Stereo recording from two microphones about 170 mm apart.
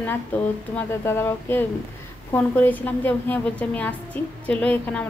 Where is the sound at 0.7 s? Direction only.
15° left (ahead or behind).